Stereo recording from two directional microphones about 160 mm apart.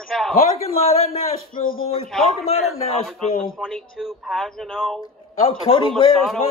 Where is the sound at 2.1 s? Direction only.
Centre (ahead or behind).